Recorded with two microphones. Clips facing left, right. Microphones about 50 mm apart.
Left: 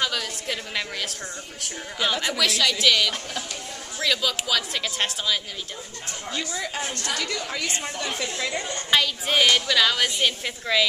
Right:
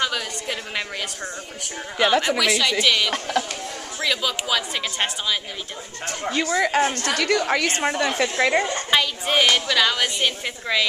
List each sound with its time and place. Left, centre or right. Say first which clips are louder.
0.0 s a woman's voice: right 2 dB; centre
2.0 s a woman's voice: right 7 dB; right
2.2 s a woman's voice: right 3 dB; centre
6.0 s a woman's voice: right 8 dB; right
6.6 s a woman's voice: right 11 dB; right
6.9 s a woman's voice: right 7 dB; right
8.9 s a woman's voice: right 1 dB; centre